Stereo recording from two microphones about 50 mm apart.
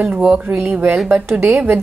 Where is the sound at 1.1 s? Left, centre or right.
Right.